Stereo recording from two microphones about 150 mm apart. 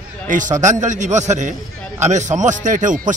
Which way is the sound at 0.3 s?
55° right (ahead or behind).